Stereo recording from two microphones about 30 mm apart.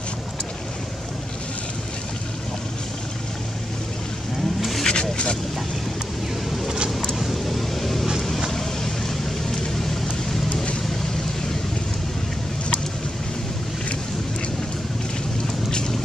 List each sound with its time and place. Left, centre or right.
4.6 s vehicle: centre
4.8 s vehicle: left
7.2 s vehicle: centre
15.4 s boat: left